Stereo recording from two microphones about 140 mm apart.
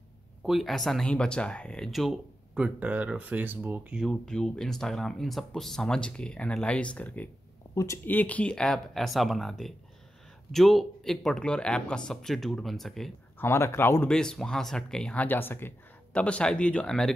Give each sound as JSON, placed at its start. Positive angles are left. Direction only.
{"t": 0.4, "sound": "speech", "side_deg": 0}
{"t": 4.0, "sound": "speech", "side_deg": 5}
{"t": 7.7, "sound": "speech", "side_deg": 20}
{"t": 13.4, "sound": "speech", "side_deg": 20}
{"t": 14.0, "sound": "speech", "side_deg": 5}